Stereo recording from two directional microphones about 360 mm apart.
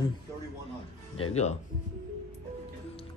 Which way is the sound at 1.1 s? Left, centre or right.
Centre.